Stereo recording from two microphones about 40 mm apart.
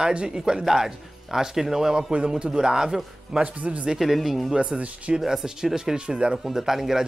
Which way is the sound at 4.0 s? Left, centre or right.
Centre.